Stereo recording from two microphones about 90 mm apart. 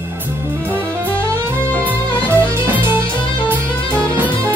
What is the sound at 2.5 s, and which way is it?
Music, 25° right (ahead or behind).